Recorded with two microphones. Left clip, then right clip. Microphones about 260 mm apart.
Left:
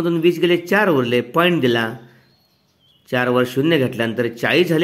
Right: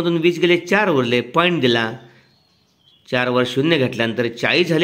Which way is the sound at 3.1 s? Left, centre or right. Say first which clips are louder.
Even; centre.